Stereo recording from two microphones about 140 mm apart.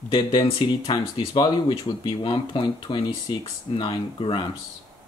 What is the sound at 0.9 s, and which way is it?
Speech, 35° left (ahead or behind).